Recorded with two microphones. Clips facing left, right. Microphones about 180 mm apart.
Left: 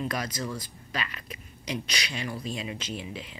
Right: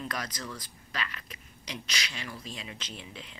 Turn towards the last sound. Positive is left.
turn(degrees=10)  # may be behind; listen again after turning